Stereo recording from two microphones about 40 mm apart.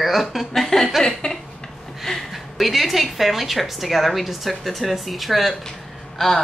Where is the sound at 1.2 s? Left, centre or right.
Left.